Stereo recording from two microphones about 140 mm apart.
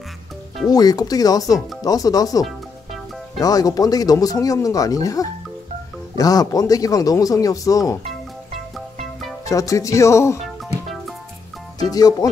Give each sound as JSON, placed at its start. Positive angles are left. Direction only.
{"t": 0.7, "sound": "speech", "side_deg": 25}
{"t": 9.4, "sound": "speech", "side_deg": 25}
{"t": 10.4, "sound": "music", "side_deg": 0}
{"t": 11.9, "sound": "speech", "side_deg": 25}